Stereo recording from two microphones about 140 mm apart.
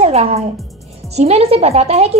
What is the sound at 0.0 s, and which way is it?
A woman's voice, 50° right (ahead or behind).